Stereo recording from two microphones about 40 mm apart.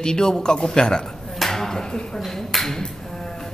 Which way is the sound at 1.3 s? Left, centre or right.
Centre.